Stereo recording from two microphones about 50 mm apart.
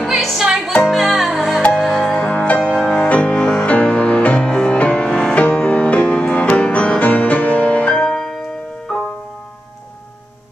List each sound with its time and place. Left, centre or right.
0.0 s music: centre
2.1 s music: left
2.6 s music: centre
3.6 s music: left
4.2 s music: left
4.5 s music: centre
5.3 s music: left
7.9 s music: centre